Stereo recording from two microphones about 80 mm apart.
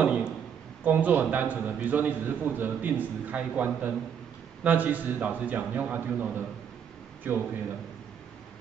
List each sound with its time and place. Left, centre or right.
0.0 s a man's voice: centre